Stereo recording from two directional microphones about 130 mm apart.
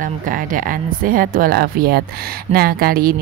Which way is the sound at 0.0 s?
90° right.